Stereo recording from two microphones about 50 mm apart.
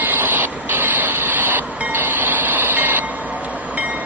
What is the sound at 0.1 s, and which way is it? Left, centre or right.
Train, right.